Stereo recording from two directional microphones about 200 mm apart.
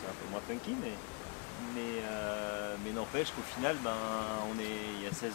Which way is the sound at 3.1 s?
20° left (ahead or behind).